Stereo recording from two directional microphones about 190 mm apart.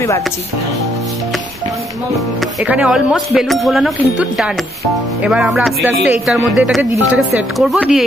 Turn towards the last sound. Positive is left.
turn(degrees=0)  # may be behind; listen again after turning